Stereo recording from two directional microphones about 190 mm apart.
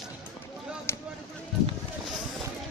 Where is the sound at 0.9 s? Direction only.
15° left (ahead or behind).